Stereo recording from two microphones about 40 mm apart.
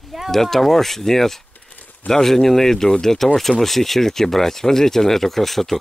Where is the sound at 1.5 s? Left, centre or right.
Left.